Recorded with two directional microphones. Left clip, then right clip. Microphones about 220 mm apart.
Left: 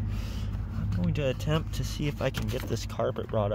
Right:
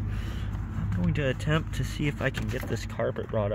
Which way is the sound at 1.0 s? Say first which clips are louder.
Right 1 dB; 5° left (ahead or behind).